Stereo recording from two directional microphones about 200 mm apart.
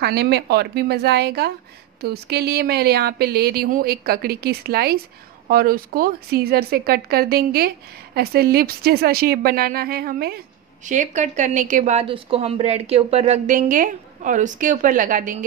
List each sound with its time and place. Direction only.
0.0 s a woman's voice: 55° right (ahead or behind)